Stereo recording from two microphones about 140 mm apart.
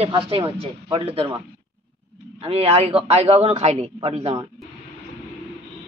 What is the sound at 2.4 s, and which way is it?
A man's voice, 45° right (ahead or behind).